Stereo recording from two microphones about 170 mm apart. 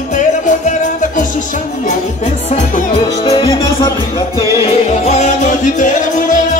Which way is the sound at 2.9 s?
25° left (ahead or behind).